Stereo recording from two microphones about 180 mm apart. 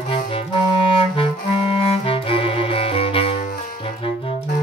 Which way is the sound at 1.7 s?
30° left (ahead or behind).